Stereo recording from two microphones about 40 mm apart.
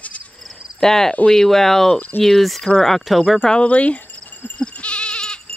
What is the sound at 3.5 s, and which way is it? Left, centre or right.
Speech, left.